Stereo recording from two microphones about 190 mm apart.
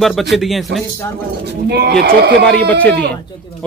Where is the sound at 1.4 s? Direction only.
60° right (ahead or behind).